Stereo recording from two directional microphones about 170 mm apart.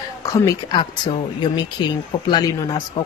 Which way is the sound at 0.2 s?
20° left (ahead or behind).